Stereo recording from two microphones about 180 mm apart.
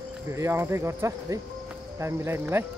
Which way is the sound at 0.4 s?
15° right (ahead or behind).